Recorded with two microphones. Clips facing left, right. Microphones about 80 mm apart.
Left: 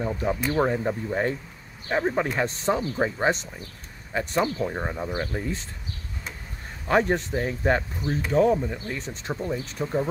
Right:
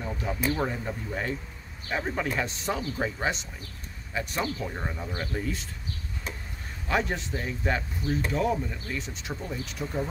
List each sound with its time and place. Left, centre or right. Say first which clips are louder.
0.0 s speech: left 4 dB; left
6.9 s speech: left 6 dB; left
8.6 s speech: left 5 dB; left
8.9 s speech: left 3 dB; left